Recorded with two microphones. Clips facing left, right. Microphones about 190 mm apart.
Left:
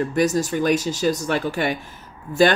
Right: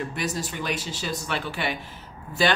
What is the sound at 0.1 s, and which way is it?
Speech, 45° left (ahead or behind).